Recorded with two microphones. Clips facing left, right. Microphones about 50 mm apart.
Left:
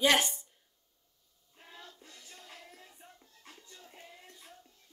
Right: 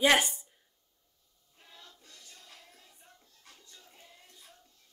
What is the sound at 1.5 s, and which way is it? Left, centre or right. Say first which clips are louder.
Music: left 4 dB; left.